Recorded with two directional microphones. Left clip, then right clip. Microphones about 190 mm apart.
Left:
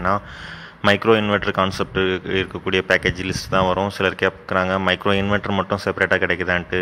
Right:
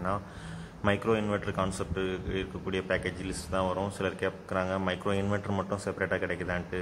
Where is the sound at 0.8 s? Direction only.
35° left (ahead or behind).